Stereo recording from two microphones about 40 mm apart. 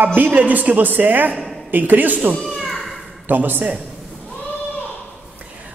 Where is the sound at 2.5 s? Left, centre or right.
Centre.